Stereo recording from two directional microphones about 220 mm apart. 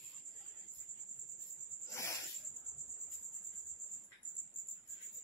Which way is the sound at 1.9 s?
15° left (ahead or behind).